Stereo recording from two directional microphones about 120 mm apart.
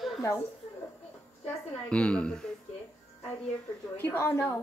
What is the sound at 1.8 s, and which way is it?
Speech, 10° left (ahead or behind).